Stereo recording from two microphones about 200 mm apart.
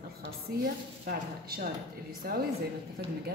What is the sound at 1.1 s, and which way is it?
Speech, 50° right (ahead or behind).